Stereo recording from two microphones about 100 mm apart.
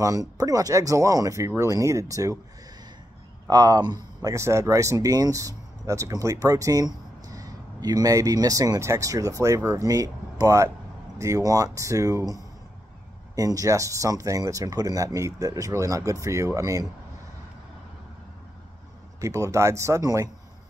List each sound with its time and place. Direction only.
0.0 s speech: 35° right (ahead or behind)
3.4 s speech: 40° right (ahead or behind)
13.4 s speech: 35° right (ahead or behind)
19.2 s speech: 30° right (ahead or behind)